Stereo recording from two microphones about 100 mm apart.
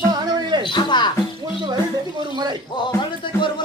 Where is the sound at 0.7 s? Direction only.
50° left (ahead or behind).